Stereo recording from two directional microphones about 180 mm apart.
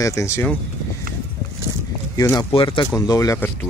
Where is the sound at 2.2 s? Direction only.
20° left (ahead or behind).